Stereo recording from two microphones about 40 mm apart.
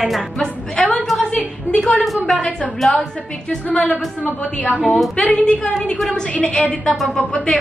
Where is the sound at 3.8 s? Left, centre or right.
Left.